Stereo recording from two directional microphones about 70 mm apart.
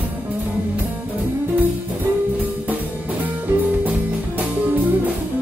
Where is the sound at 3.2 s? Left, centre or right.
Right.